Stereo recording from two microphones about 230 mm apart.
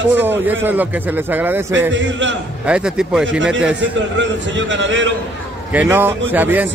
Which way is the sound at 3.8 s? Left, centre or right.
Right.